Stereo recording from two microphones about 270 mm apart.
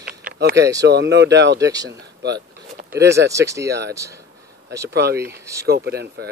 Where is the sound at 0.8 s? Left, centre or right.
Right.